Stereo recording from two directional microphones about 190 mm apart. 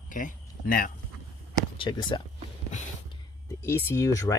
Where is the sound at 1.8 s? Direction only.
25° left (ahead or behind).